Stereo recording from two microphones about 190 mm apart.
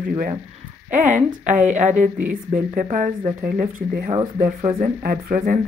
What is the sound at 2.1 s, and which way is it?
Speech, 10° right (ahead or behind).